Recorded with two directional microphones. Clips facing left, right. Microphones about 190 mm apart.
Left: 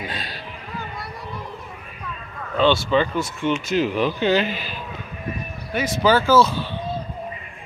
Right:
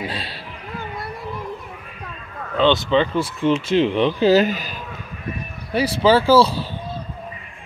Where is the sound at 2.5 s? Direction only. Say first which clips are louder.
Right 1 dB; 20° right (ahead or behind); by 4.7 s 45° right (ahead or behind).